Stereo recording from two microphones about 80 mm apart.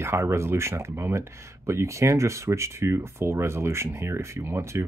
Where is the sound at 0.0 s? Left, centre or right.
Right.